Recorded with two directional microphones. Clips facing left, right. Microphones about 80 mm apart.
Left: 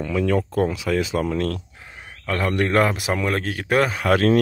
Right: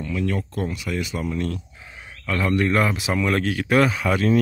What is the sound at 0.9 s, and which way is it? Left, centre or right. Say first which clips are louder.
Speech: left 5 dB; left.